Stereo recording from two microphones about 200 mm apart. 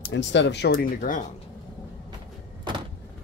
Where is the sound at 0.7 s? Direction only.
40° left (ahead or behind).